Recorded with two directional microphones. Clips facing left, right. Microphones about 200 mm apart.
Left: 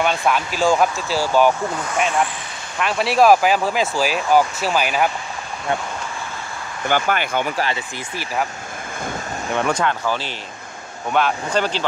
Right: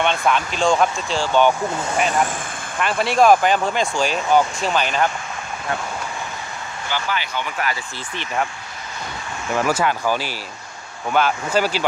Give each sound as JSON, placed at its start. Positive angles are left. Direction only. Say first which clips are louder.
{"t": 0.0, "sound": "speech", "louder": "even", "side_deg": 5}
{"t": 2.8, "sound": "speech", "louder": "left 1 dB", "side_deg": 0}
{"t": 6.9, "sound": "speech", "louder": "left 6 dB", "side_deg": 55}
{"t": 9.5, "sound": "speech", "louder": "right 1 dB", "side_deg": -5}